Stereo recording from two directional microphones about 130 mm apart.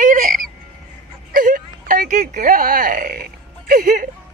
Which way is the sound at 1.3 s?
90° right.